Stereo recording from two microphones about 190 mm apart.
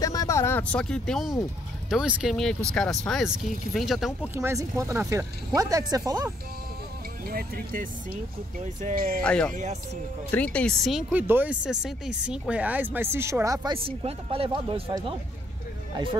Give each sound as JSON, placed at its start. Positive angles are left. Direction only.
{"t": 0.0, "sound": "speech", "side_deg": 20}
{"t": 4.4, "sound": "speech", "side_deg": -15}
{"t": 7.2, "sound": "speech", "side_deg": -50}
{"t": 9.2, "sound": "speech", "side_deg": 5}
{"t": 9.5, "sound": "speech", "side_deg": -40}
{"t": 10.3, "sound": "speech", "side_deg": 5}
{"t": 13.7, "sound": "speech", "side_deg": -30}